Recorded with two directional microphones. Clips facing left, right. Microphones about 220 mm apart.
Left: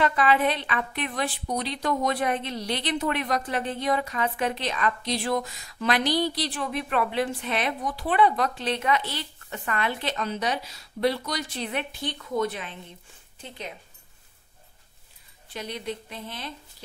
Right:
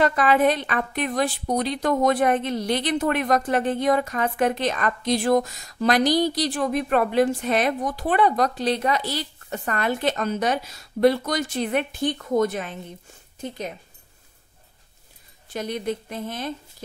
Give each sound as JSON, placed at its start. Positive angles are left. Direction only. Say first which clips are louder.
{"t": 0.0, "sound": "a woman's voice", "louder": "right 4 dB", "side_deg": -45}
{"t": 15.4, "sound": "a woman's voice", "louder": "right 6 dB", "side_deg": -45}